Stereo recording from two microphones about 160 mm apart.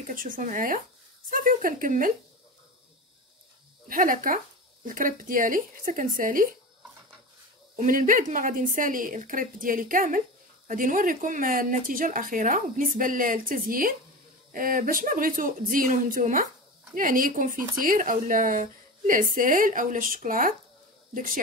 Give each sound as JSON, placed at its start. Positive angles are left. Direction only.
{"t": 0.1, "sound": "speech", "side_deg": -60}
{"t": 3.9, "sound": "speech", "side_deg": -60}
{"t": 7.7, "sound": "speech", "side_deg": -55}